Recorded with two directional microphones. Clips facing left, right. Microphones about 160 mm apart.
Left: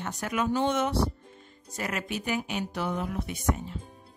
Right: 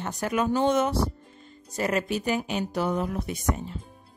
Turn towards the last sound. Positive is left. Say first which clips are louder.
# right 4 dB
turn(degrees=-40)  # may be behind; listen again after turning